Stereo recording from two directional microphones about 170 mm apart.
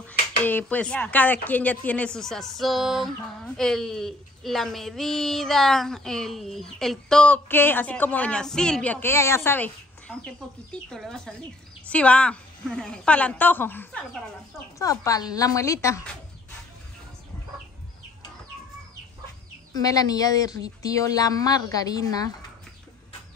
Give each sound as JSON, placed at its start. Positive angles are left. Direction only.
{"t": 0.0, "sound": "speech", "side_deg": 10}
{"t": 19.7, "sound": "speech", "side_deg": 20}